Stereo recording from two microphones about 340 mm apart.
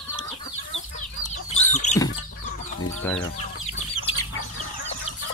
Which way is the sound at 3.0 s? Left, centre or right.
Centre.